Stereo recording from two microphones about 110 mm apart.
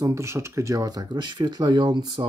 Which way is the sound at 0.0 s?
25° right (ahead or behind).